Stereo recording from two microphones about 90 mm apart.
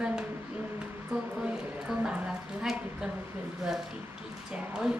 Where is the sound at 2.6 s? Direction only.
5° right (ahead or behind).